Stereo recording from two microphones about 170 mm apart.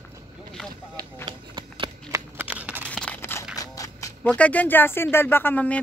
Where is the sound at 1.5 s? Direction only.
25° right (ahead or behind).